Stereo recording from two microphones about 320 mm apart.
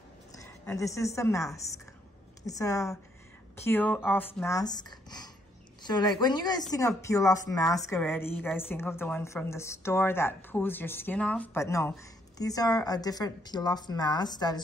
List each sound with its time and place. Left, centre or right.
0.3 s a woman's voice: centre